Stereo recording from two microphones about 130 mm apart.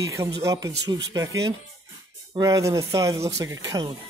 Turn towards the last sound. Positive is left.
turn(degrees=-30)  # may be behind; listen again after turning